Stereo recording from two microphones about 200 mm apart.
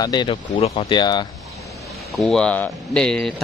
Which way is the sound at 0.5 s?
30° left (ahead or behind).